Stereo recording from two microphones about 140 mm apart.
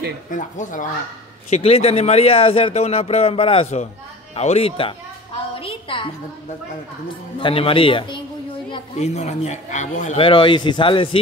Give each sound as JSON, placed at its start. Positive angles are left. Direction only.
{"t": 0.3, "sound": "a man's voice", "side_deg": 65}
{"t": 1.5, "sound": "speech", "side_deg": 45}
{"t": 5.6, "sound": "a sound", "side_deg": 40}
{"t": 7.3, "sound": "speech", "side_deg": 40}
{"t": 8.9, "sound": "a man's voice", "side_deg": 55}
{"t": 10.1, "sound": "speech", "side_deg": 40}